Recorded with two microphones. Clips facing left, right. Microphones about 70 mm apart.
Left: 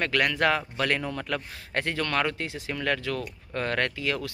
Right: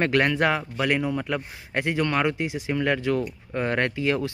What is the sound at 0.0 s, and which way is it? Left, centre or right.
Speech, right.